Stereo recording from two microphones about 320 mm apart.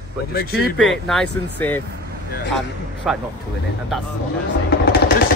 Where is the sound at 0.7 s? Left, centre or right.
Centre.